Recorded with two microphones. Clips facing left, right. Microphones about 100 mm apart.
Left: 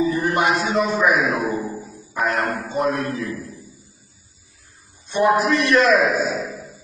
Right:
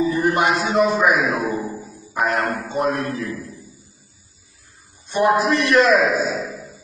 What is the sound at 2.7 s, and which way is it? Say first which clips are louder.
Speech: even; centre (ahead or behind).